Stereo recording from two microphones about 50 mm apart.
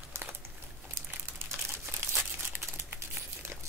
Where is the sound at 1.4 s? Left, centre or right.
Right.